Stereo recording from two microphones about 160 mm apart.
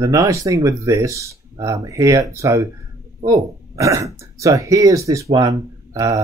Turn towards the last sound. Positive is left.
turn(degrees=-20)  # may be behind; listen again after turning